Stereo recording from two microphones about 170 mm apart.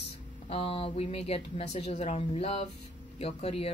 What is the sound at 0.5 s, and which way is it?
Speech, 35° left (ahead or behind).